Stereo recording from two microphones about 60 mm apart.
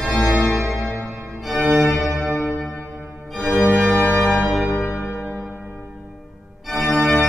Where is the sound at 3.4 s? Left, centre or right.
Centre.